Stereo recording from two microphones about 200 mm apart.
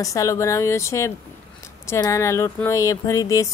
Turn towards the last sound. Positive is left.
turn(degrees=15)  # may be behind; listen again after turning